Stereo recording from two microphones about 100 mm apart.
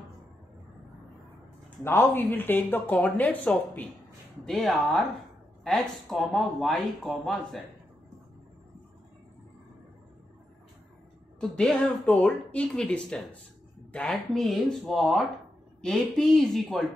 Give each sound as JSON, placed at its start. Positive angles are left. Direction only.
{"t": 1.8, "sound": "speech", "side_deg": 25}
{"t": 4.5, "sound": "speech", "side_deg": 0}
{"t": 11.3, "sound": "speech", "side_deg": 5}